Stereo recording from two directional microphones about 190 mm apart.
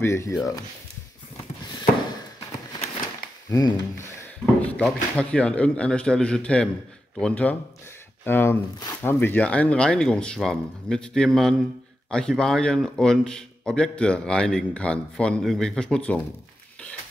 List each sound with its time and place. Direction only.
0.0 s speech: 15° left (ahead or behind)
3.4 s speech: 20° left (ahead or behind)
4.6 s speech: 5° left (ahead or behind)